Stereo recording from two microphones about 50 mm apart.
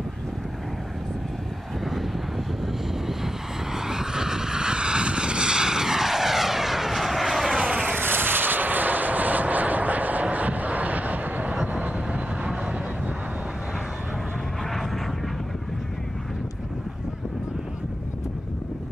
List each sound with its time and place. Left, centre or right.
2.6 s vehicle: centre
7.9 s vehicle: right